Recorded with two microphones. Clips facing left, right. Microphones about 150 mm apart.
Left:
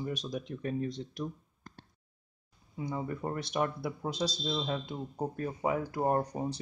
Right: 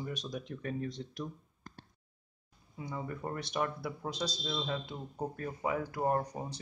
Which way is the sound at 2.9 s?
20° left (ahead or behind).